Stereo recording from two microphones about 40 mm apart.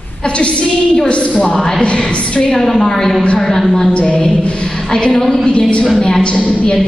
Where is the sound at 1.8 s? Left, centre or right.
Left.